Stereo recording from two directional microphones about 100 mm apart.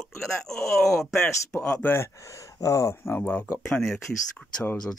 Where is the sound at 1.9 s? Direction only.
30° left (ahead or behind).